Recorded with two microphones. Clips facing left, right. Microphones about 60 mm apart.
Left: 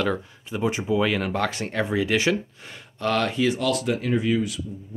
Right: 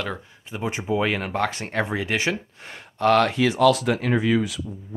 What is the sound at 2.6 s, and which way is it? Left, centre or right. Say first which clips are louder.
Speech: right 6 dB; right.